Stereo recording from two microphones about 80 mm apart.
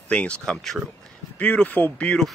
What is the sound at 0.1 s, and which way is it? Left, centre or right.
Speech, centre.